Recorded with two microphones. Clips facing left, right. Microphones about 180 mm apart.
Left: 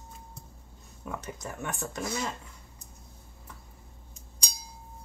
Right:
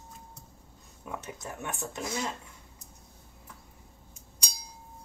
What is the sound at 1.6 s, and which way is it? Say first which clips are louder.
Speech: left 2 dB; 20° right (ahead or behind).